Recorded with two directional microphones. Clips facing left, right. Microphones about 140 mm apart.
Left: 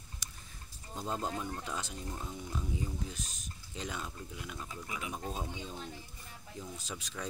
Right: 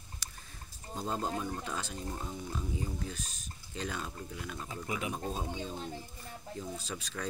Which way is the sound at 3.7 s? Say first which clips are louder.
Right 3 dB; 15° left (ahead or behind).